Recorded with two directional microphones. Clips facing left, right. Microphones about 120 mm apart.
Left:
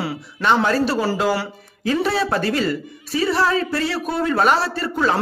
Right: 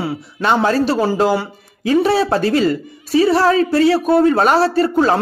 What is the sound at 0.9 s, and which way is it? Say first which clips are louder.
Speech: right 4 dB; 20° right (ahead or behind).